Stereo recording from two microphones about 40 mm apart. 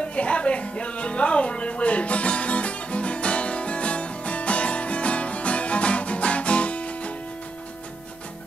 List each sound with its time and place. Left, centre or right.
0.0 s music: left